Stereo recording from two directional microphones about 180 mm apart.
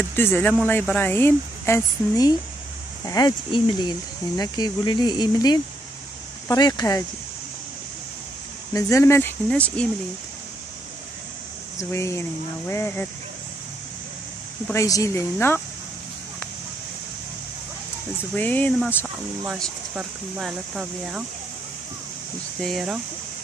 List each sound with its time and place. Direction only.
0.1 s speech: 10° left (ahead or behind)
8.7 s speech: 15° left (ahead or behind)
11.8 s speech: 15° left (ahead or behind)
14.7 s speech: 15° left (ahead or behind)
18.3 s speech: 10° left (ahead or behind)
19.4 s speech: centre (ahead or behind)
22.6 s speech: centre (ahead or behind)